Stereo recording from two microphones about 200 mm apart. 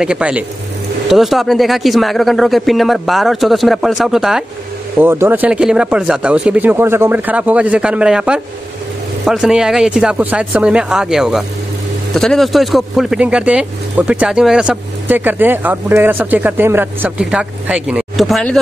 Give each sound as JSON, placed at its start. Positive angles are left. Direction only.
{"t": 0.0, "sound": "speech", "side_deg": -5}